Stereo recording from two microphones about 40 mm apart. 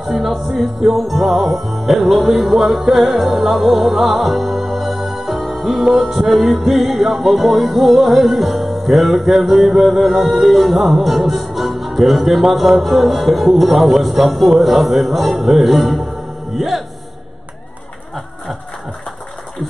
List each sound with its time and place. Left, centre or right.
0.0 s music: centre